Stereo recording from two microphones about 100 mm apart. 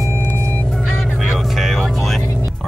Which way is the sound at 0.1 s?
20° right (ahead or behind).